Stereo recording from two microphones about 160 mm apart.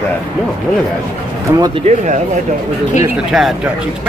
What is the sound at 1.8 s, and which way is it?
Speech, 50° right (ahead or behind).